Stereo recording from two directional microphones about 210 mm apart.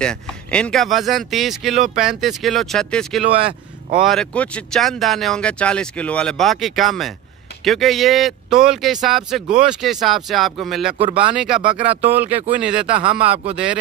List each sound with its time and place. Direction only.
0.0 s speech: 5° left (ahead or behind)
11.6 s speech: 25° right (ahead or behind)
12.1 s speech: 10° right (ahead or behind)
12.9 s speech: 25° right (ahead or behind)